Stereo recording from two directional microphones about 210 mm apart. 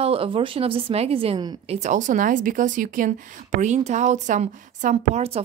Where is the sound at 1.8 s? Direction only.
35° right (ahead or behind).